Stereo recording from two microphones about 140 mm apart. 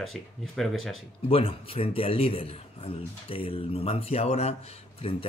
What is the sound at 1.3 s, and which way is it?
A man's voice, 40° left (ahead or behind).